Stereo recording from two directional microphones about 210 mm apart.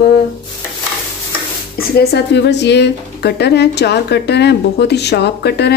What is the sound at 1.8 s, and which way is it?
A woman's voice, 50° left (ahead or behind).